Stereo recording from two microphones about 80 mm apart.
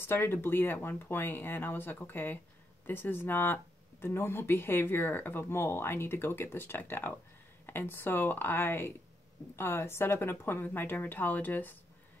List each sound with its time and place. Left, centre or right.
0.0 s speech: left